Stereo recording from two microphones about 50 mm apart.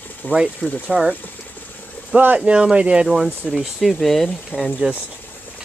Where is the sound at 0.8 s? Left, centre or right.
Centre.